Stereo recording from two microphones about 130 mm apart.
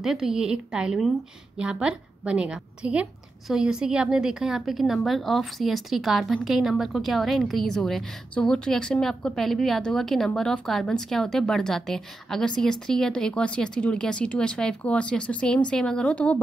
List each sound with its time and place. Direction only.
0.0 s a woman's voice: 5° right (ahead or behind)